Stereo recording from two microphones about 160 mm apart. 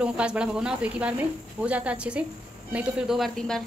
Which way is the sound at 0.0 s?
5° right (ahead or behind).